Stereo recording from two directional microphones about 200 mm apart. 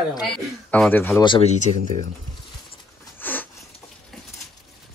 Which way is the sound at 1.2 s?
30° left (ahead or behind).